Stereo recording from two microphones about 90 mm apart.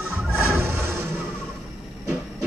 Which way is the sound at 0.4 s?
25° right (ahead or behind).